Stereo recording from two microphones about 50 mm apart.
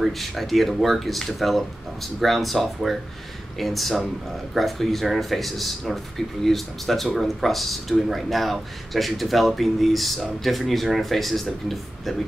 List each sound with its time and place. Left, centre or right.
0.0 s speech: centre